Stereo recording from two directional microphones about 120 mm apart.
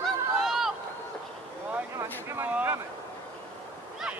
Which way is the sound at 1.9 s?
20° right (ahead or behind).